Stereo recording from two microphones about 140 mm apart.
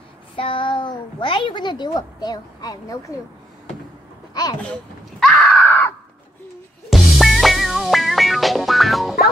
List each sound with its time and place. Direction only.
0.4 s a woman's voice: 40° left (ahead or behind)
4.3 s a sound: 30° left (ahead or behind)
5.2 s screaming: 10° left (ahead or behind)
6.9 s music: centre (ahead or behind)